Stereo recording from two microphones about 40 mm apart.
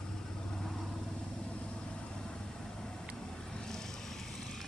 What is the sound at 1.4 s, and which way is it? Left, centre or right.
Vehicle, left.